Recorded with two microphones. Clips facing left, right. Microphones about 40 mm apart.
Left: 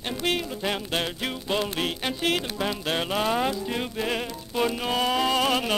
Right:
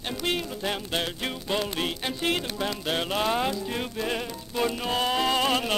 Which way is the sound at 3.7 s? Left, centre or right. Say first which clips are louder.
Left 1 dB; centre.